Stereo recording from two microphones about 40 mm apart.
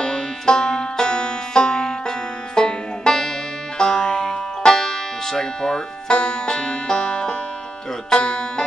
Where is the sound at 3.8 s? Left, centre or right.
Centre.